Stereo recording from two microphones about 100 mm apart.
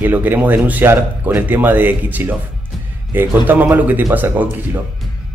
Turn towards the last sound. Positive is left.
turn(degrees=-15)  # may be behind; listen again after turning